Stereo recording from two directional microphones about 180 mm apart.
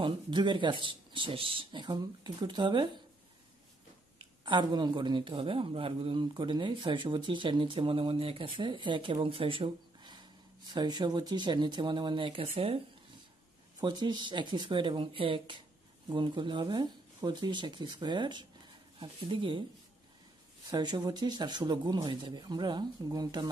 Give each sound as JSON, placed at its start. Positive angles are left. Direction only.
{"t": 0.0, "sound": "speech", "side_deg": -25}
{"t": 4.2, "sound": "speech", "side_deg": -25}
{"t": 20.7, "sound": "speech", "side_deg": -25}